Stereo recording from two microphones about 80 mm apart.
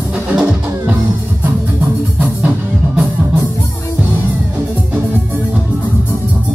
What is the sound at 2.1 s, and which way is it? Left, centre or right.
Music, centre.